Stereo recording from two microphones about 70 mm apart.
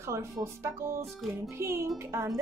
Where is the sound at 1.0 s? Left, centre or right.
Centre.